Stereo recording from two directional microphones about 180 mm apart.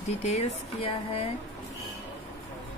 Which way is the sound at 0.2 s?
35° left (ahead or behind).